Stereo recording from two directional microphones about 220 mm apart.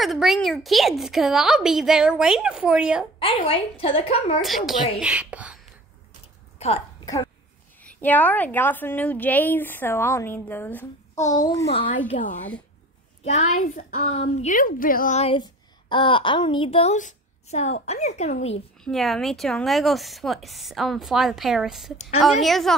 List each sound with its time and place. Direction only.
0.0 s a woman's voice: centre (ahead or behind)
3.2 s a woman's voice: 25° left (ahead or behind)
4.4 s a woman's voice: centre (ahead or behind)
6.6 s a woman's voice: 30° left (ahead or behind)
7.8 s a woman's voice: 5° left (ahead or behind)
11.9 s a woman's voice: 35° left (ahead or behind)
18.9 s a woman's voice: centre (ahead or behind)